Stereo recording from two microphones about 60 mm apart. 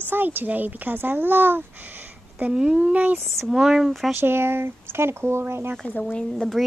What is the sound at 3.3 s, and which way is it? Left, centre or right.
Speech, centre.